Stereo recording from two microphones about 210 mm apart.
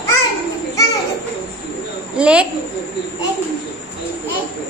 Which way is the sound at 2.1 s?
5° right (ahead or behind).